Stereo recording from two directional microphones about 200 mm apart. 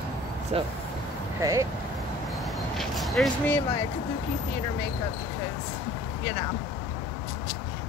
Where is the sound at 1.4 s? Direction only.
15° right (ahead or behind).